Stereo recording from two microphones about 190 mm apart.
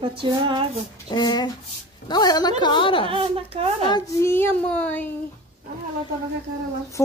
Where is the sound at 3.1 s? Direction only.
30° right (ahead or behind).